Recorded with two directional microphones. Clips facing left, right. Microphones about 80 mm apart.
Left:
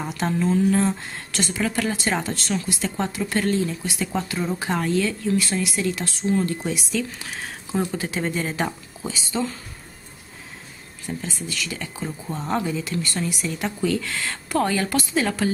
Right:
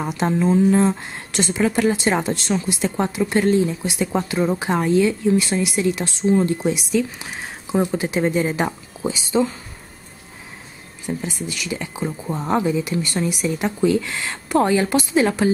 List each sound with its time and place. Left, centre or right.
0.0 s a woman's voice: centre
11.1 s a woman's voice: centre